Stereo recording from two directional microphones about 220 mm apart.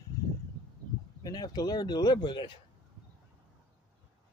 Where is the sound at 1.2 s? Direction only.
20° left (ahead or behind).